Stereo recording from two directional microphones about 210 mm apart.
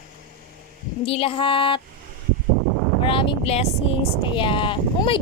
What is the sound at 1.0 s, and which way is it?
Speech, 25° left (ahead or behind).